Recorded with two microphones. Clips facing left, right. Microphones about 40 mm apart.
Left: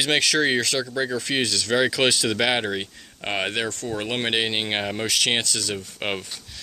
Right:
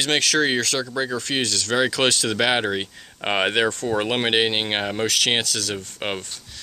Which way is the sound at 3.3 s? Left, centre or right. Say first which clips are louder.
Right 5 dB; right.